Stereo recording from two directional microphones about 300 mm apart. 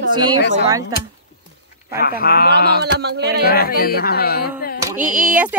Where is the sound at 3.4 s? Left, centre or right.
Left.